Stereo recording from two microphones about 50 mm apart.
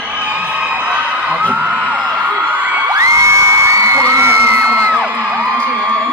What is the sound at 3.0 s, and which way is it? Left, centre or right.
Whoop, right.